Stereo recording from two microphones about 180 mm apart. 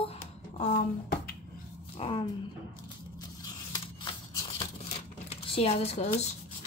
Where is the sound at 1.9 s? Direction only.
30° left (ahead or behind).